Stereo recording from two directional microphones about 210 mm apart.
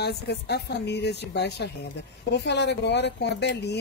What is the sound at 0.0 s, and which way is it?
Speech, 50° left (ahead or behind).